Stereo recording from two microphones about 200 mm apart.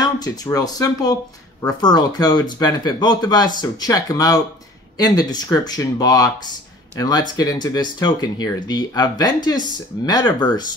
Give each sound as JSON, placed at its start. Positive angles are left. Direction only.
{"t": 0.0, "sound": "speech", "side_deg": 20}